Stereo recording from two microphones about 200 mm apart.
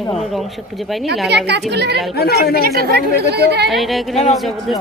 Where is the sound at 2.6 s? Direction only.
50° right (ahead or behind).